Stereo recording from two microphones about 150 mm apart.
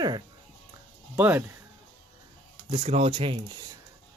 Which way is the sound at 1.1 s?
10° right (ahead or behind).